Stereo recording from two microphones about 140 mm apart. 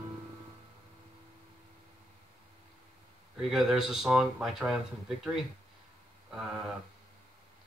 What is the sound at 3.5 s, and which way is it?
Speech, 5° right (ahead or behind).